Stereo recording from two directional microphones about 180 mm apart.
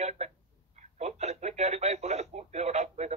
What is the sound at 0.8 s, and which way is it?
Telephone, 40° right (ahead or behind).